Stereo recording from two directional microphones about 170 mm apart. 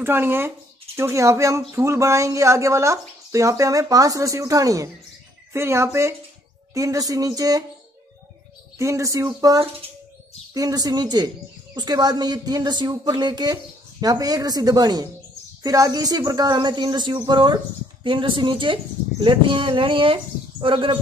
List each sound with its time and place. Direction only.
0.0 s speech: 15° right (ahead or behind)
8.7 s speech: 20° right (ahead or behind)